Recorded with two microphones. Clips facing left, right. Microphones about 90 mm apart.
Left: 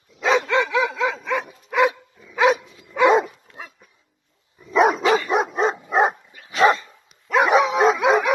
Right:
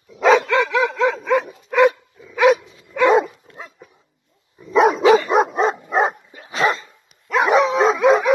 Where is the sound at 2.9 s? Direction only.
15° left (ahead or behind).